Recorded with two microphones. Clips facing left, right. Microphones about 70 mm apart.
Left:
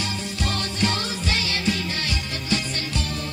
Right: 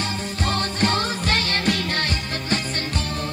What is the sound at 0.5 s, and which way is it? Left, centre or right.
Music, right.